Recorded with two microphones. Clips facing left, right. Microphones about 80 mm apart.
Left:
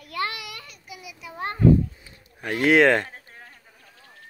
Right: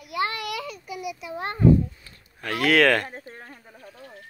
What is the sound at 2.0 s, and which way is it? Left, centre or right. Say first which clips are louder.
Speech: left 1 dB; centre.